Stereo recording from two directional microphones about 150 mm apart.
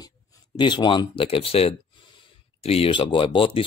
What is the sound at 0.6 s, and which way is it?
Speech, 30° left (ahead or behind).